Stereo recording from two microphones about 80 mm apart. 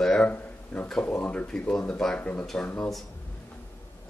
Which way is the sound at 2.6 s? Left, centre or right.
Left.